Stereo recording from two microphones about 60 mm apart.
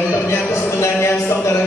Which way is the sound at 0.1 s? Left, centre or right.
Left.